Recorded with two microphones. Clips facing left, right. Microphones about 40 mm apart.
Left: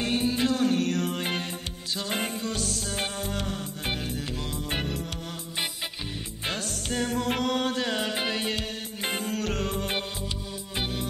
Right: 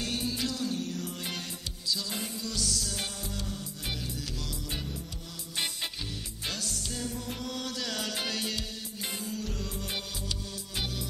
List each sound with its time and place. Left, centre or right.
0.0 s music: left
6.4 s music: left